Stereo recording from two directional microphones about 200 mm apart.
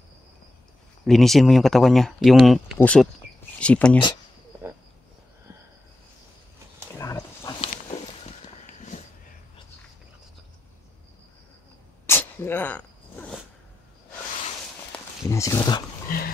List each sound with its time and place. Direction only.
1.0 s speech: centre (ahead or behind)
7.0 s a sound: 15° left (ahead or behind)
12.1 s sneeze: 10° left (ahead or behind)
15.3 s speech: 15° left (ahead or behind)
16.1 s speech: 45° left (ahead or behind)